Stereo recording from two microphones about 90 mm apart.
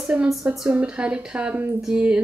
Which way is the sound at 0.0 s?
15° right (ahead or behind).